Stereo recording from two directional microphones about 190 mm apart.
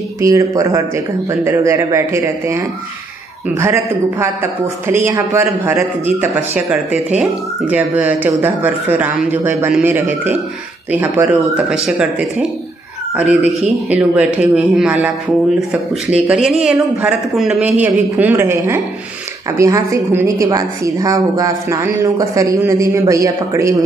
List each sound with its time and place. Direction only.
0.2 s a man's voice: 15° right (ahead or behind)